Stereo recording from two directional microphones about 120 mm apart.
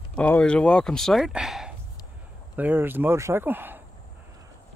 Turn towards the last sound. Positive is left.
turn(degrees=-15)  # may be behind; listen again after turning